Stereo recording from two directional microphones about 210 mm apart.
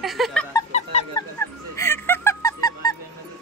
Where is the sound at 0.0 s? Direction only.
Centre (ahead or behind).